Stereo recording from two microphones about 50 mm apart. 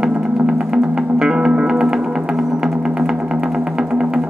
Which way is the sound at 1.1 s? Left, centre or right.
Centre.